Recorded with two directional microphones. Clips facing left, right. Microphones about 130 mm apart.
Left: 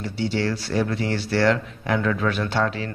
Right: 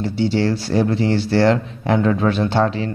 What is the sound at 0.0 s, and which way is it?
Speech, 30° right (ahead or behind).